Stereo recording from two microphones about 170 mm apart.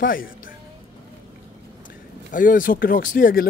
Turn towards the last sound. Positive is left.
turn(degrees=55)  # may be behind; listen again after turning